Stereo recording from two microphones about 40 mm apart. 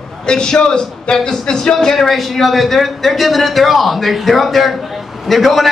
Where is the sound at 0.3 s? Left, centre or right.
Centre.